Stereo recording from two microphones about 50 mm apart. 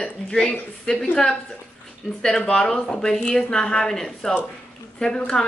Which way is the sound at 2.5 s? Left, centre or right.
Centre.